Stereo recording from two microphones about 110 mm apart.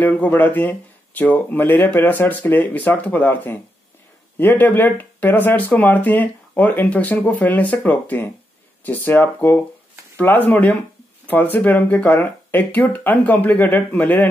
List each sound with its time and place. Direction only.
0.0 s speech: 15° left (ahead or behind)